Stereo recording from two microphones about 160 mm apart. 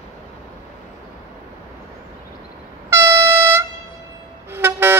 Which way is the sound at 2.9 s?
15° right (ahead or behind).